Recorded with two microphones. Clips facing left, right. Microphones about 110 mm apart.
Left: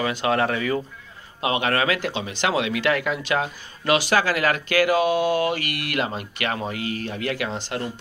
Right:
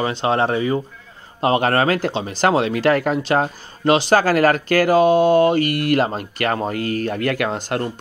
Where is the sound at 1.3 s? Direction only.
40° right (ahead or behind).